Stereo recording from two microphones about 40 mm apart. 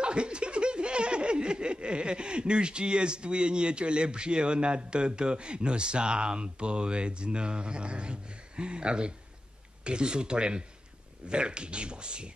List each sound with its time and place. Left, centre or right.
0.0 s snicker: right